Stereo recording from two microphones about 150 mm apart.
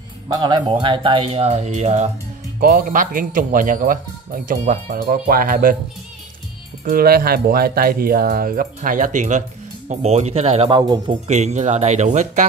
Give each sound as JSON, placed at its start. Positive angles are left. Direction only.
{"t": 0.3, "sound": "speech", "side_deg": -30}
{"t": 2.6, "sound": "a man's voice", "side_deg": -75}
{"t": 6.8, "sound": "a man's voice", "side_deg": -80}
{"t": 10.7, "sound": "speech", "side_deg": -25}
{"t": 11.2, "sound": "speech", "side_deg": -50}